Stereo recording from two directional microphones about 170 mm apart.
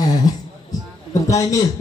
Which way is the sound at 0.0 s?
25° left (ahead or behind).